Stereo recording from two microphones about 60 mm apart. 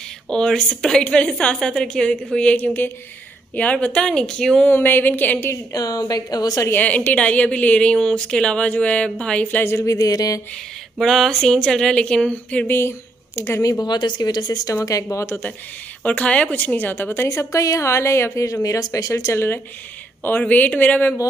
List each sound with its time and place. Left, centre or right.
0.3 s a woman's voice: centre
4.6 s a woman's voice: left
5.7 s a woman's voice: left
6.7 s a woman's voice: left
9.7 s speech: left
9.9 s a sound: left
11.0 s speech: centre; by 12.6 s left
12.6 s a woman's voice: left
13.7 s speech: left
16.0 s a woman's voice: left
20.2 s a woman's voice: left